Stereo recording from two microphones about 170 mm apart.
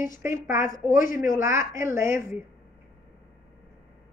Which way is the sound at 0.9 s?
55° left (ahead or behind).